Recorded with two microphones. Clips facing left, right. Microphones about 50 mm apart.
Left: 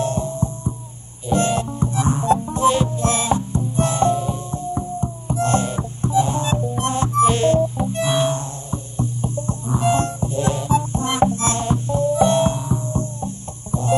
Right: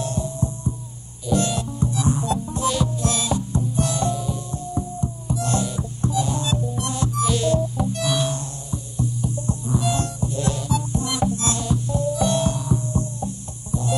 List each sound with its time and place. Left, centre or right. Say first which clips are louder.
0.0 s music: left 4 dB; left